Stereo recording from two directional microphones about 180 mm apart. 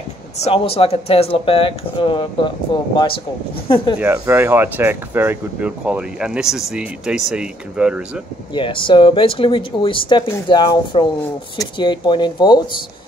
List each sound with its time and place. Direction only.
0.4 s speech: 30° left (ahead or behind)
3.6 s speech: 30° left (ahead or behind)
4.0 s speech: 10° right (ahead or behind)
8.5 s speech: 30° left (ahead or behind)